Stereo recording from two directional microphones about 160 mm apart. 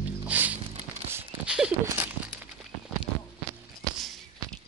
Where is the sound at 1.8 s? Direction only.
10° right (ahead or behind).